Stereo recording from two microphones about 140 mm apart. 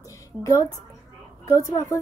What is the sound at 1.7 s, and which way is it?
Speech, 20° left (ahead or behind).